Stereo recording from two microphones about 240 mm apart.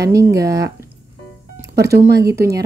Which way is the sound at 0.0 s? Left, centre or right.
Centre.